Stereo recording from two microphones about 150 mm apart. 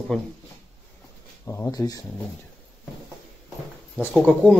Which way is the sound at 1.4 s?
15° left (ahead or behind).